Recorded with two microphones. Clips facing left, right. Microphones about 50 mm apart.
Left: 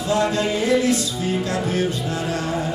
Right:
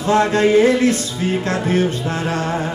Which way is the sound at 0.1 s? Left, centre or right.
Right.